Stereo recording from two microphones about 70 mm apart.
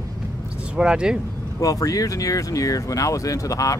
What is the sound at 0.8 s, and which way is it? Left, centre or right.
Speech, centre.